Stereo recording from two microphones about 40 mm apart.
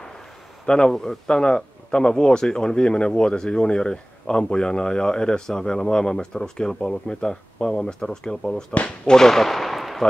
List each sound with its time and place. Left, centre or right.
0.7 s a man's voice: left; by 10.0 s centre